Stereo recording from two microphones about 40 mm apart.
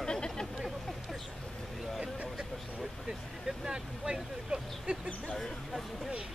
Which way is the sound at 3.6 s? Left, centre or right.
Centre.